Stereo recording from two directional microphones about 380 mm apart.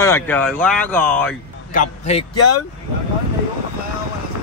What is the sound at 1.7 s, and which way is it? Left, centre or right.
Speech, centre.